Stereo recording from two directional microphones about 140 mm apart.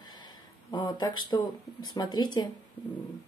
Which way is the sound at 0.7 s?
30° left (ahead or behind).